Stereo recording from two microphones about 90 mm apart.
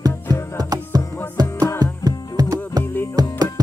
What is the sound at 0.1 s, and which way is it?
Music, 30° left (ahead or behind).